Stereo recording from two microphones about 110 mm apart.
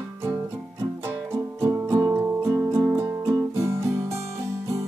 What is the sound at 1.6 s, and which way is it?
Music, 25° right (ahead or behind).